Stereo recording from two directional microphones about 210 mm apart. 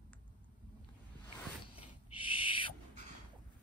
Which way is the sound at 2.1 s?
25° left (ahead or behind).